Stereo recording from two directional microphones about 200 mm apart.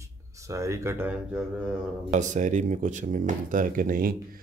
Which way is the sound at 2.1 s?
35° right (ahead or behind).